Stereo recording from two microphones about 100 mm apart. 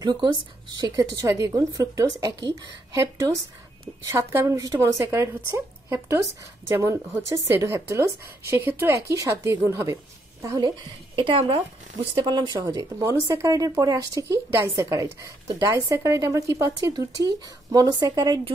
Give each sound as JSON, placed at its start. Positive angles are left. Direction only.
{"t": 0.0, "sound": "a woman's voice", "side_deg": -45}
{"t": 0.9, "sound": "speech", "side_deg": -35}
{"t": 11.1, "sound": "speech", "side_deg": -60}
{"t": 12.5, "sound": "speech", "side_deg": -35}